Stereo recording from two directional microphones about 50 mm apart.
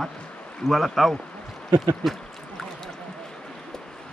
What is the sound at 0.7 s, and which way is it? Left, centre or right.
Speech, centre.